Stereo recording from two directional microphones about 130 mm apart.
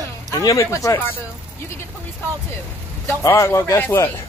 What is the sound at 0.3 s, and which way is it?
Speech, 25° left (ahead or behind).